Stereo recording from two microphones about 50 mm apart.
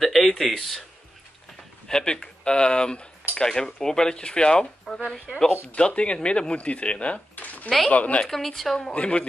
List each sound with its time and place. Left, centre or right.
0.0 s a sound: centre
0.4 s speech: centre
1.9 s speech: centre
8.3 s speech: centre
8.9 s speech: left